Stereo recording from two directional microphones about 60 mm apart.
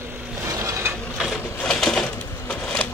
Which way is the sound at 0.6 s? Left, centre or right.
Right.